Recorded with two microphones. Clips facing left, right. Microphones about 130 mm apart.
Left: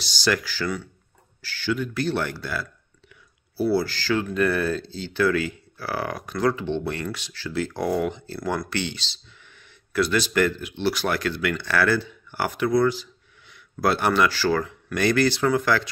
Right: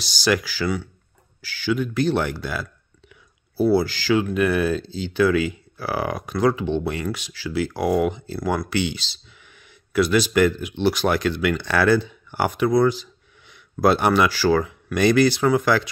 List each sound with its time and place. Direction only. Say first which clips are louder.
0.0 s speech: right 3 dB; 15° right (ahead or behind)